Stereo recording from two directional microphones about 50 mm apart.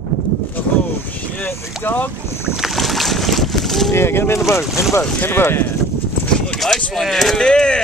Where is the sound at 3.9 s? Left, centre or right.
Left.